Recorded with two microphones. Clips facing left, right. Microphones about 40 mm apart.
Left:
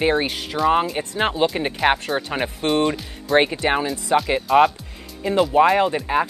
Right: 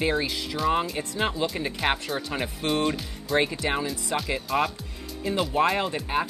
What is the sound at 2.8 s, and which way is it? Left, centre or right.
Speech, centre.